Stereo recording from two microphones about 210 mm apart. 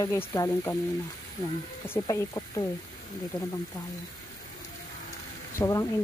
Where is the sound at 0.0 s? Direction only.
15° left (ahead or behind).